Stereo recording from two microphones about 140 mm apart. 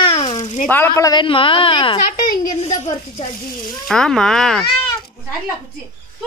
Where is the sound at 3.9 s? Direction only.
5° left (ahead or behind).